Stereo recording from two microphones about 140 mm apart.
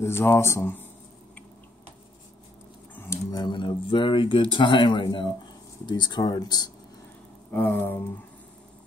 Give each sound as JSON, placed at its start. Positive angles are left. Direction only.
{"t": 0.0, "sound": "speech", "side_deg": 15}
{"t": 3.0, "sound": "speech", "side_deg": 20}
{"t": 7.5, "sound": "speech", "side_deg": 10}